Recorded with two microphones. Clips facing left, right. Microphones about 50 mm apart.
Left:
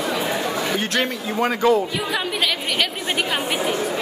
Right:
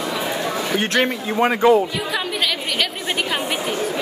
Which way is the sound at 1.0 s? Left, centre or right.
Right.